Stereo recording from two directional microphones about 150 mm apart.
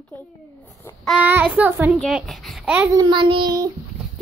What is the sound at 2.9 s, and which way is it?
Speech, 30° right (ahead or behind).